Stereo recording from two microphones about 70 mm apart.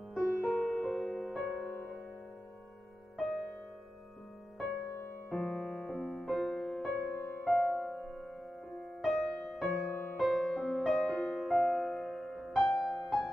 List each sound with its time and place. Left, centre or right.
0.1 s music: centre
3.2 s music: centre
5.3 s music: centre
7.2 s music: left
7.4 s music: centre
9.8 s music: left
10.1 s music: centre